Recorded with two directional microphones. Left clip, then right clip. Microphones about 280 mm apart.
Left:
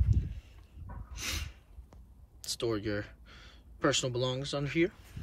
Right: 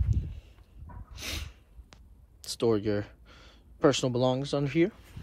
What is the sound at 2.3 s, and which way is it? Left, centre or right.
Speech, centre.